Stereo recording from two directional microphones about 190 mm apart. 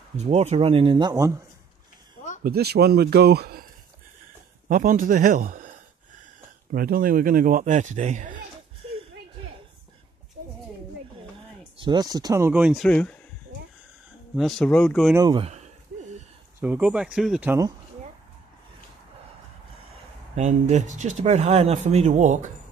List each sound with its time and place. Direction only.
0.2 s speech: 35° right (ahead or behind); by 1.4 s 15° right (ahead or behind)
2.4 s speech: 55° right (ahead or behind)
4.6 s speech: 45° right (ahead or behind)
6.7 s speech: 50° right (ahead or behind)
11.7 s speech: 25° right (ahead or behind); by 13.1 s 5° left (ahead or behind)
14.3 s speech: centre (ahead or behind)
15.3 s speech: 30° right (ahead or behind)
16.5 s speech: 10° right (ahead or behind)
20.3 s speech: 35° right (ahead or behind)